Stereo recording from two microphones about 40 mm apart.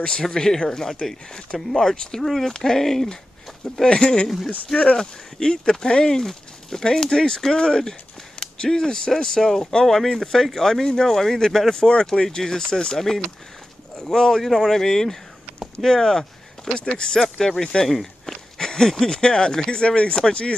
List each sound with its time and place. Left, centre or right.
0.0 s speech: centre
2.2 s speech: centre
17.8 s speech: centre
18.6 s speech: centre